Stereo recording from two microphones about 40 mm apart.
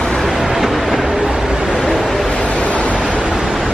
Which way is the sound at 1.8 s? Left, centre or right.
Centre.